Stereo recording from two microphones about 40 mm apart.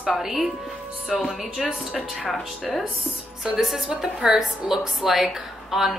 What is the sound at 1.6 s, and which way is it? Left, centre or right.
A woman's voice, centre.